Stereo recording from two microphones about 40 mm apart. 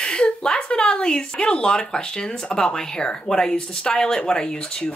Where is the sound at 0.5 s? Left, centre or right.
Left.